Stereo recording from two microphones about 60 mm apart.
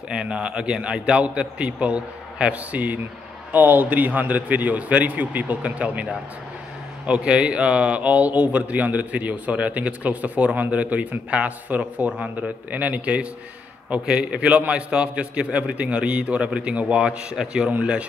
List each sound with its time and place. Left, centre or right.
0.1 s a man's voice: centre